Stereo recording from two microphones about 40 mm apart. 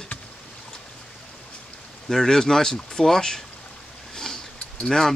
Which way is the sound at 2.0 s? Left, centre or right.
Centre.